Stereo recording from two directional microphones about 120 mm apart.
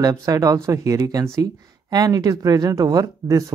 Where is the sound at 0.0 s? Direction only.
30° right (ahead or behind).